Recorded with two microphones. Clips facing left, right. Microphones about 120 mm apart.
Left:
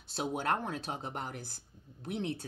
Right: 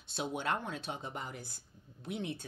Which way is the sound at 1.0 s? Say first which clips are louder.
Left 2 dB; 55° left (ahead or behind).